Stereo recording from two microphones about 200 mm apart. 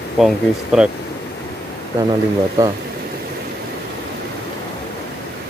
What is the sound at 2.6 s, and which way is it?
Speech, 15° right (ahead or behind).